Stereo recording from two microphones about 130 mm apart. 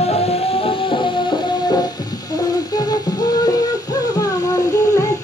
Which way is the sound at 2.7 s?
30° left (ahead or behind).